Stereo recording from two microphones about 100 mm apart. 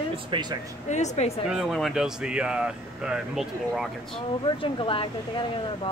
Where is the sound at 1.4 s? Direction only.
Centre (ahead or behind).